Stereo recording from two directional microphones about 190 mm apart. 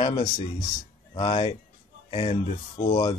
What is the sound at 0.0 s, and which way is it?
A man's voice, 25° left (ahead or behind).